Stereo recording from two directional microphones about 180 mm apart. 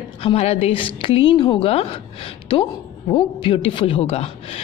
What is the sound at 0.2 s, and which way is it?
A woman's voice, 35° left (ahead or behind).